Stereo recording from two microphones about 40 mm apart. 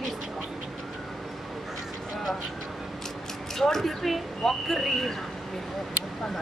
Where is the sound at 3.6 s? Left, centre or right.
Centre.